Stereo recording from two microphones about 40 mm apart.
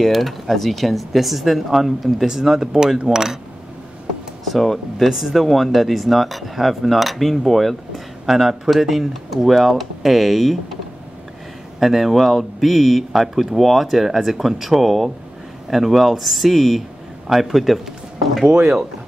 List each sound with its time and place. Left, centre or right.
0.0 s speech: centre
4.5 s speech: centre
11.8 s speech: centre
18.5 s speech: right